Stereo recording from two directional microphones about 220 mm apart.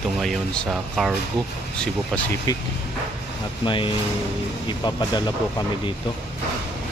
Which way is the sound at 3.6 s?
20° left (ahead or behind).